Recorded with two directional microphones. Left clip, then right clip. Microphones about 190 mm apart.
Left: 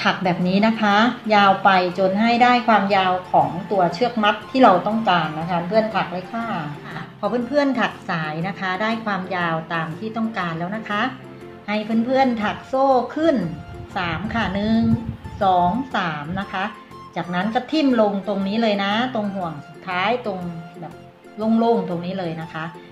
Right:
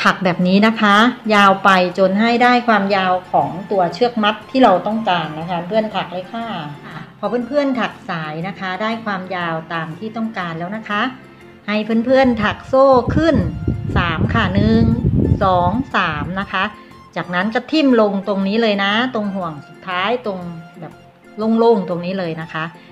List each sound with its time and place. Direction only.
0.0 s a woman's voice: 35° right (ahead or behind); by 11.1 s 20° right (ahead or behind)
11.6 s speech: 30° right (ahead or behind)
21.4 s speech: 30° right (ahead or behind)